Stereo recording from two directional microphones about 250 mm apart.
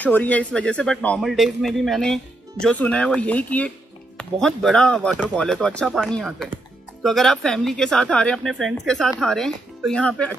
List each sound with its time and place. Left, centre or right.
0.0 s speech: centre